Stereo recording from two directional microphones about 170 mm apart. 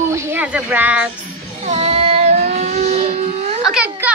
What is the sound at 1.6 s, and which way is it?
Vehicle, 40° right (ahead or behind).